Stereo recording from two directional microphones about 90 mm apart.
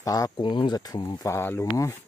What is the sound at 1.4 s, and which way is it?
Speech, 30° left (ahead or behind).